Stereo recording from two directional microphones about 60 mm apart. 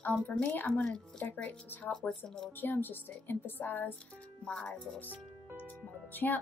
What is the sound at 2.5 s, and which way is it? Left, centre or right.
Speech, left.